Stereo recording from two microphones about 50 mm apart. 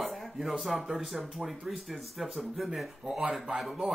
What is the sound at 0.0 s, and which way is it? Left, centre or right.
A man's voice, centre.